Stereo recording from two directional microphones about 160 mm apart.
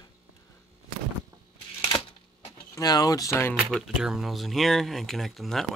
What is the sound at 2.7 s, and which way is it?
Speech, 25° left (ahead or behind).